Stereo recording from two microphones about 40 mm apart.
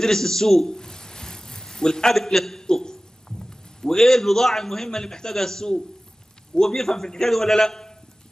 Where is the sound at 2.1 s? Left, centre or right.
Centre.